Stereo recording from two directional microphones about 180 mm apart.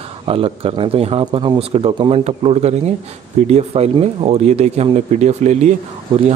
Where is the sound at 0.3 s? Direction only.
30° right (ahead or behind).